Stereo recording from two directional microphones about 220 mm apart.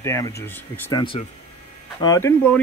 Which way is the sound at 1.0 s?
25° left (ahead or behind).